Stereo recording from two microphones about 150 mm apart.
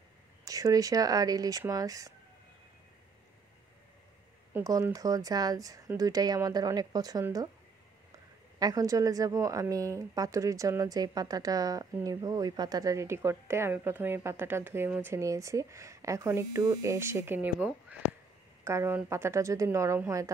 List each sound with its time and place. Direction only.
0.5 s speech: 25° right (ahead or behind)
4.6 s speech: 25° right (ahead or behind)
8.5 s speech: 25° right (ahead or behind)